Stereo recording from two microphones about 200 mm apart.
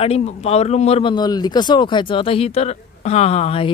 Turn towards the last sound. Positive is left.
turn(degrees=30)  # may be behind; listen again after turning